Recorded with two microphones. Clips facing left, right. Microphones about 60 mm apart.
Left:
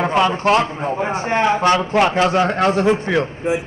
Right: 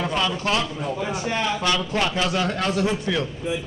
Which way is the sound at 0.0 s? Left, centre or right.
Left.